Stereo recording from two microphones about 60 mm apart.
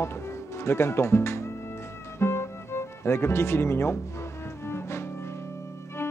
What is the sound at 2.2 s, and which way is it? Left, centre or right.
Music, left.